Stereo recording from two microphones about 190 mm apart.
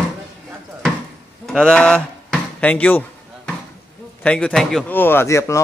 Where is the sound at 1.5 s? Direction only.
5° left (ahead or behind).